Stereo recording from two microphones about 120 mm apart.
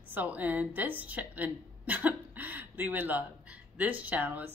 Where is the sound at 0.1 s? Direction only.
15° right (ahead or behind).